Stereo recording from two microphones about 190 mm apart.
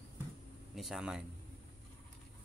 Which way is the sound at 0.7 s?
Centre (ahead or behind).